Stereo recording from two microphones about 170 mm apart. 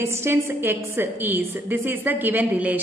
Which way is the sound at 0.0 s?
15° right (ahead or behind).